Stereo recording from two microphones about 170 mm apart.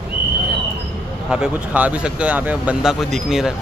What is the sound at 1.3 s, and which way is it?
Speech, 5° right (ahead or behind).